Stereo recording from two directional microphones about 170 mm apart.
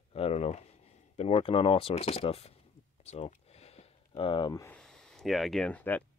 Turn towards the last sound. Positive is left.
turn(degrees=10)  # may be behind; listen again after turning